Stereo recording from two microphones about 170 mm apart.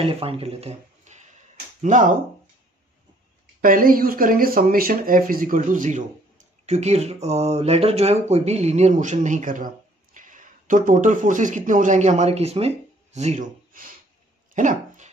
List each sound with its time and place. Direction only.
0.0 s speech: 35° right (ahead or behind)
3.6 s speech: 55° right (ahead or behind)
14.5 s dog: 50° right (ahead or behind)